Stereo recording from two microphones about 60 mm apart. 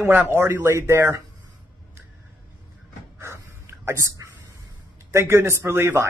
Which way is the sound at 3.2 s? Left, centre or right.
Right.